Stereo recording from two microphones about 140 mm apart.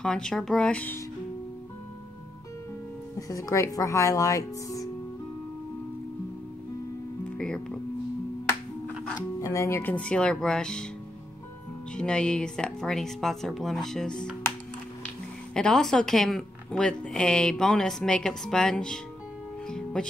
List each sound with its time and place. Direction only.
0.0 s speech: 5° left (ahead or behind)
3.2 s speech: 25° left (ahead or behind)
7.3 s speech: 5° left (ahead or behind)
9.4 s speech: 20° left (ahead or behind); by 10.9 s 5° left (ahead or behind)
11.9 s a woman's voice: 5° left (ahead or behind)
15.5 s a woman's voice: 5° left (ahead or behind)